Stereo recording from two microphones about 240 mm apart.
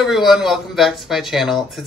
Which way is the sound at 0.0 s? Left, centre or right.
Centre.